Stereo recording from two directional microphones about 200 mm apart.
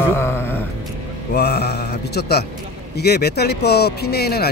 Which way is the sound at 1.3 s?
55° left (ahead or behind).